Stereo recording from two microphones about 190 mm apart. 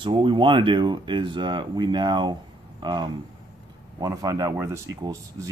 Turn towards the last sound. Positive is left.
turn(degrees=-15)  # may be behind; listen again after turning